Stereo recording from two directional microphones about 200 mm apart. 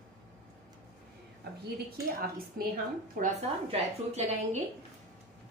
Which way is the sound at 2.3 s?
50° right (ahead or behind).